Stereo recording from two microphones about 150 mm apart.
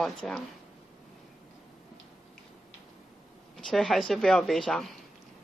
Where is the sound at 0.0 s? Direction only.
Centre (ahead or behind).